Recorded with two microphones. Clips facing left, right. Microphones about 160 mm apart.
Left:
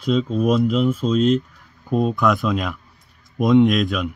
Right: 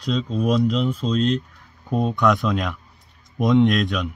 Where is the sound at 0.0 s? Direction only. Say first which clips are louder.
Left 4 dB; 5° left (ahead or behind).